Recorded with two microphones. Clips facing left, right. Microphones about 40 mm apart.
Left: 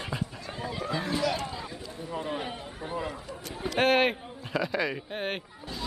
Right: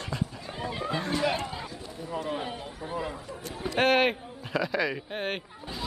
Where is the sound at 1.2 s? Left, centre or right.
Right.